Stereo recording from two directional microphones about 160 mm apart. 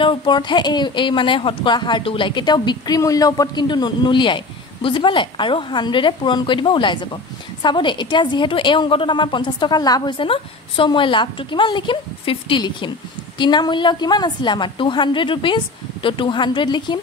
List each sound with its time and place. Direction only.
0.0 s a woman's voice: 30° left (ahead or behind)